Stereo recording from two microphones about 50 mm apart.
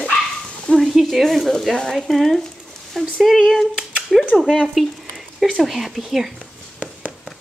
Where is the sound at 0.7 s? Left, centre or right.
Centre.